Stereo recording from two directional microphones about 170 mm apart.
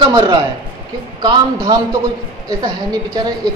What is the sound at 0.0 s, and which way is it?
A man's voice, 30° right (ahead or behind).